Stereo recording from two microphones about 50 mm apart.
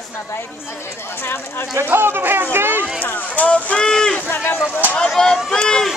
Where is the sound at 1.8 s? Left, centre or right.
Right.